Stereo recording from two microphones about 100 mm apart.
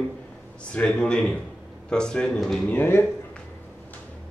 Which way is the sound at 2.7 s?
20° left (ahead or behind).